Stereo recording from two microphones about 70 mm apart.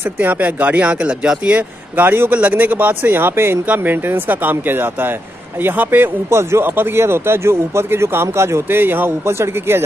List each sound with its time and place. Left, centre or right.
0.2 s speech: right
2.0 s speech: right